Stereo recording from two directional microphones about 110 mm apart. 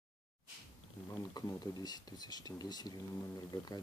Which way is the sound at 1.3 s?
35° left (ahead or behind).